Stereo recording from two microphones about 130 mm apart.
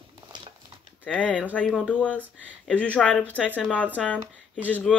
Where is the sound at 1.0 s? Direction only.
10° left (ahead or behind).